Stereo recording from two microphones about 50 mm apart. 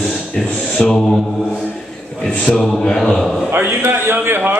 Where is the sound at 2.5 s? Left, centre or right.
Centre.